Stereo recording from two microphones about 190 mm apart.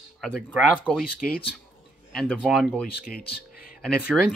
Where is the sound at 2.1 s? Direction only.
Centre (ahead or behind).